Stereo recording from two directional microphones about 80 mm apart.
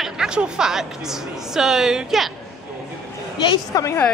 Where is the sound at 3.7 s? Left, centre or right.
Left.